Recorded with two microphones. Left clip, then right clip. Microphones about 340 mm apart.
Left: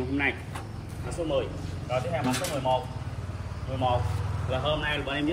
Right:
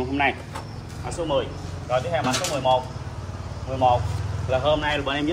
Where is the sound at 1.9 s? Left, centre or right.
Centre.